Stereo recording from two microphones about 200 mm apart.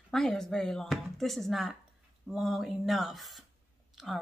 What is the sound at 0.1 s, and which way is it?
Speech, centre (ahead or behind).